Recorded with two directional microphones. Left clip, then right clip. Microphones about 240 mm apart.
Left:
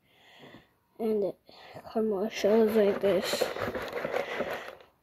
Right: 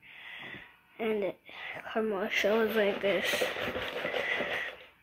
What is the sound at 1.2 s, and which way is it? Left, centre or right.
Speech, left.